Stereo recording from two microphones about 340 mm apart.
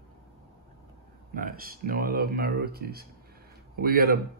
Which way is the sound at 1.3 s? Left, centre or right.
Right.